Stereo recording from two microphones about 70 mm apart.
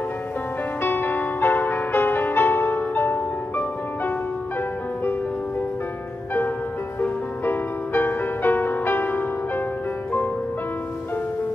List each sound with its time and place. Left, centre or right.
0.8 s music: left
7.0 s music: left